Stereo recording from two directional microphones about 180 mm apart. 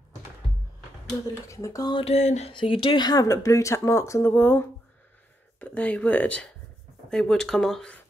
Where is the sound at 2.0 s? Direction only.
40° left (ahead or behind).